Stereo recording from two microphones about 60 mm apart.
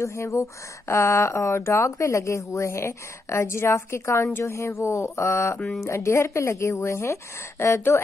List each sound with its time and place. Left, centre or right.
0.0 s speech: left
4.3 s a woman's voice: left
4.6 s speech: left